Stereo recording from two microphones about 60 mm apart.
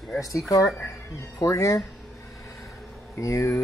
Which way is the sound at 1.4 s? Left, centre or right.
Left.